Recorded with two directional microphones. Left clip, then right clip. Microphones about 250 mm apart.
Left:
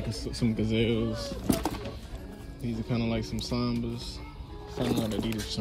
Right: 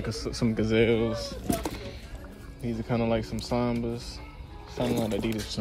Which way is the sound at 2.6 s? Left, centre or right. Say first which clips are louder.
Right 4 dB; right.